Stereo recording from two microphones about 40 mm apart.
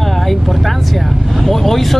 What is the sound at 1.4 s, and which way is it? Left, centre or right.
Speech, centre.